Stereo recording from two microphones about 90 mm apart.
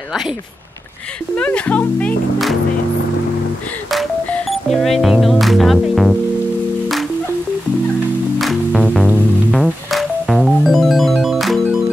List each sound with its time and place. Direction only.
1.3 s speech: 15° left (ahead or behind)
4.5 s speech: centre (ahead or behind)
5.2 s music: centre (ahead or behind)
8.4 s music: centre (ahead or behind)
9.5 s organ: centre (ahead or behind)